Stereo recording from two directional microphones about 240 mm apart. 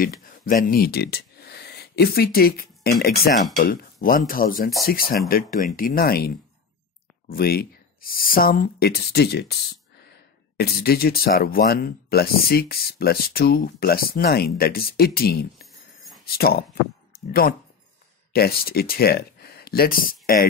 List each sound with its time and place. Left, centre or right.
0.0 s a sound: left
2.8 s speech: left
10.6 s speech: left